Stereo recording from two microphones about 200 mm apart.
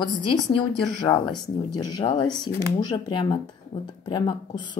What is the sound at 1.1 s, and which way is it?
Speech, 10° left (ahead or behind).